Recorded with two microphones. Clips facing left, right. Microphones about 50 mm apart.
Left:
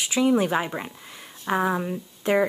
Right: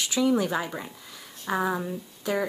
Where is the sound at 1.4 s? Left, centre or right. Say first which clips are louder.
Left 3 dB; left.